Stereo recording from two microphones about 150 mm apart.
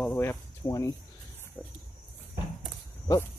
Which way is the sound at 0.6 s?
20° left (ahead or behind).